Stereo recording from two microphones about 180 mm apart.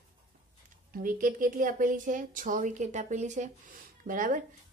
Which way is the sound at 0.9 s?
50° right (ahead or behind).